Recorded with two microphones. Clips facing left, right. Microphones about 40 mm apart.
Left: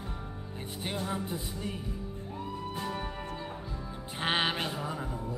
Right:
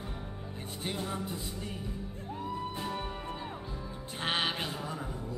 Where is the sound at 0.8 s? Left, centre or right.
Centre.